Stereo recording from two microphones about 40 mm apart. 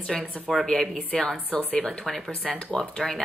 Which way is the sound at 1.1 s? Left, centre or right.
Left.